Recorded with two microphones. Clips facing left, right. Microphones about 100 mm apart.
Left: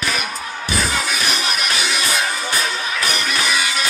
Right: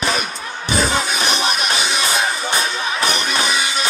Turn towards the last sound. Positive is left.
turn(degrees=-25)  # may be behind; listen again after turning